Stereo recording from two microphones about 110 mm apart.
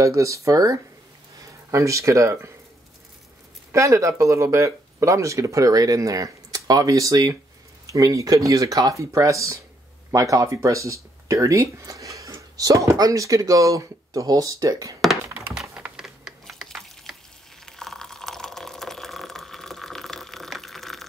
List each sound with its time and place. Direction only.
0.0 s speech: 30° right (ahead or behind)
3.7 s speech: 30° right (ahead or behind)
15.3 s typing: 5° right (ahead or behind)
15.8 s a sound: 5° right (ahead or behind)
17.6 s water: 5° left (ahead or behind)